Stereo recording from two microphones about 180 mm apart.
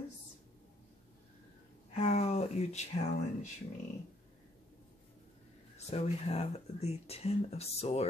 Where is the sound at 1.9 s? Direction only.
40° left (ahead or behind).